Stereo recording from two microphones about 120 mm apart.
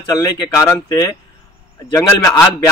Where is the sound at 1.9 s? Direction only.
30° left (ahead or behind).